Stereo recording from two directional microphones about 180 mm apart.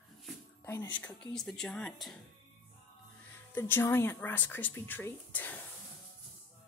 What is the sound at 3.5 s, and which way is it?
Speech, 10° left (ahead or behind).